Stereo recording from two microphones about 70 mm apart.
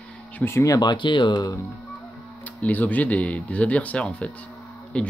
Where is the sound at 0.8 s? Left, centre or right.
Left.